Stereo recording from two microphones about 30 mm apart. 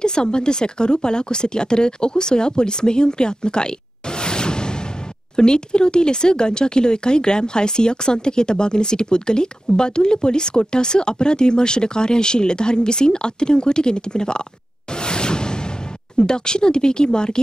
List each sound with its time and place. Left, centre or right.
0.0 s speech: left
4.2 s whoosh: left
5.3 s speech: left
15.0 s whoosh: left
16.2 s speech: left